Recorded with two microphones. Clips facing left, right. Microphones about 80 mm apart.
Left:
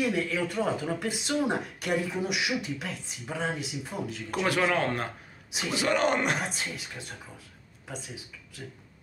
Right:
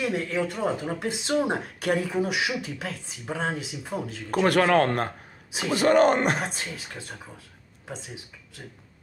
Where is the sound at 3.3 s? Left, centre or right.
Right.